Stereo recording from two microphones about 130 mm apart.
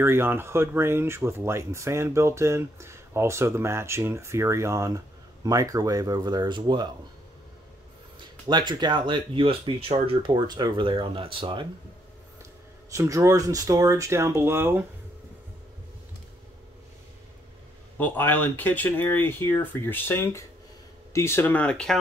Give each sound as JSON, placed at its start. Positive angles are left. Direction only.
{"t": 0.0, "sound": "speech", "side_deg": -20}
{"t": 8.2, "sound": "speech", "side_deg": -35}
{"t": 12.9, "sound": "speech", "side_deg": -25}
{"t": 17.9, "sound": "speech", "side_deg": 15}